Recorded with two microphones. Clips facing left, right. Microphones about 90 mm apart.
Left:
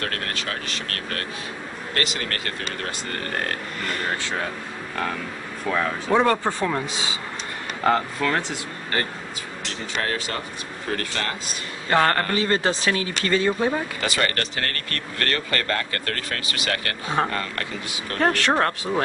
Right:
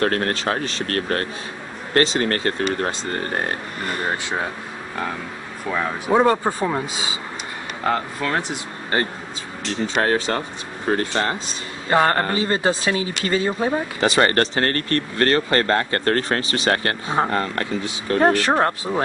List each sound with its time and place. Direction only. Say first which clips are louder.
0.0 s speech: right 9 dB; 35° right (ahead or behind); by 4.5 s 20° right (ahead or behind)
5.7 s speech: right 1 dB; 10° right (ahead or behind)
8.2 s speech: even; 15° right (ahead or behind)
10.0 s speech: right 7 dB; 35° right (ahead or behind); by 19.0 s 20° right (ahead or behind)